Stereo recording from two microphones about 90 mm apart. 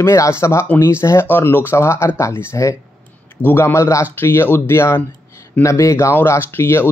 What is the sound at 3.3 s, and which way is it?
Speech, 25° left (ahead or behind).